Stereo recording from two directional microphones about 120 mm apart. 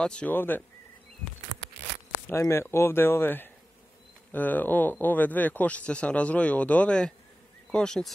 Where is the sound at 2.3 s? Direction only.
20° left (ahead or behind).